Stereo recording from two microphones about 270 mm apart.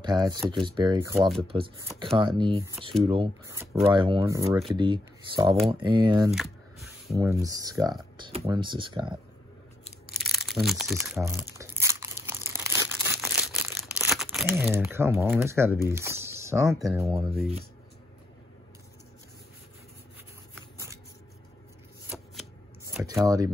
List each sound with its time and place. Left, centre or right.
0.0 s speech: centre
6.3 s shuffling cards: centre
7.4 s speech: centre
10.1 s crumpling: centre
13.7 s speech: centre
20.5 s shuffling cards: centre
22.1 s shuffling cards: centre
23.0 s speech: centre